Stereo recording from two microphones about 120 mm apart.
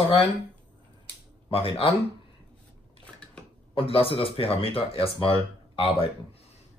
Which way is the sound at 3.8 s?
50° left (ahead or behind).